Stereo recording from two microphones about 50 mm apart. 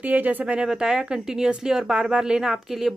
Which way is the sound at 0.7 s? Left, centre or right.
Centre.